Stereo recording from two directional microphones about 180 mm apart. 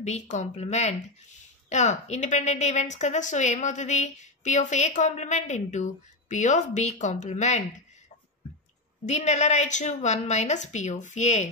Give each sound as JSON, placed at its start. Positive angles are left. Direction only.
{"t": 0.0, "sound": "a woman's voice", "side_deg": 40}
{"t": 9.0, "sound": "a woman's voice", "side_deg": 40}